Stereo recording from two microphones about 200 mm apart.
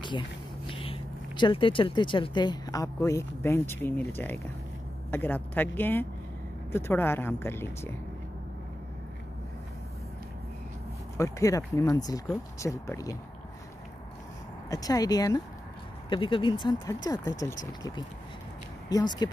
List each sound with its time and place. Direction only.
0.0 s speech: 25° left (ahead or behind)
5.1 s speech: 10° left (ahead or behind)
11.1 s speech: 15° left (ahead or behind)
14.7 s speech: 20° left (ahead or behind)